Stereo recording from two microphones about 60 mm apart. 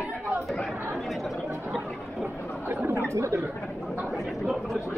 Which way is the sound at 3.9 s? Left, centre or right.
Centre.